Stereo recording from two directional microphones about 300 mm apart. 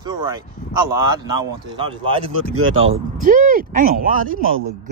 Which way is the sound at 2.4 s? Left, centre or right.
Right.